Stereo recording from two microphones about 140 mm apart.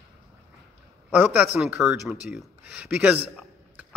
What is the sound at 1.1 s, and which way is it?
Speech, 10° right (ahead or behind).